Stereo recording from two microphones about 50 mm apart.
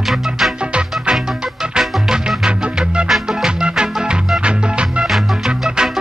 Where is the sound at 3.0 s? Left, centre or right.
Centre.